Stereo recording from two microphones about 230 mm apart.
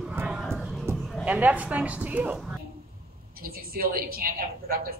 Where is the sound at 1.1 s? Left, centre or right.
Centre.